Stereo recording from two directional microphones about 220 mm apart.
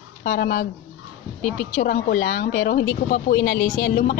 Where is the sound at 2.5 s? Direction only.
55° left (ahead or behind).